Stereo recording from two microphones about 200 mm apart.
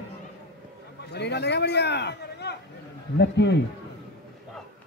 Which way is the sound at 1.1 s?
55° left (ahead or behind).